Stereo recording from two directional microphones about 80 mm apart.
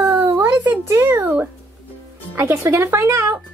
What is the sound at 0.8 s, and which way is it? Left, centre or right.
Speech, right.